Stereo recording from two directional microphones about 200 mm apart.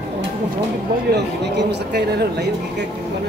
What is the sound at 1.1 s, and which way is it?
Speech, 55° right (ahead or behind).